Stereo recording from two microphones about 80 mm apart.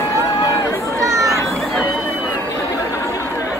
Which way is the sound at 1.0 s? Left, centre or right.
Right.